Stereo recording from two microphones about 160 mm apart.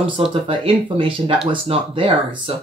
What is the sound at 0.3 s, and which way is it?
Speech, 35° right (ahead or behind).